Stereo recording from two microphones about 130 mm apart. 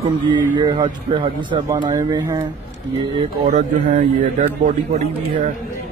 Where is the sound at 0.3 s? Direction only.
35° right (ahead or behind).